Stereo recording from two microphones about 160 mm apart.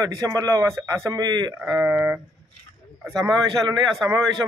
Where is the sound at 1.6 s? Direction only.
10° right (ahead or behind).